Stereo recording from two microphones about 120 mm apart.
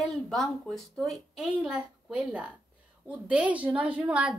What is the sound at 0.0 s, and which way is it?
A woman's voice, centre (ahead or behind).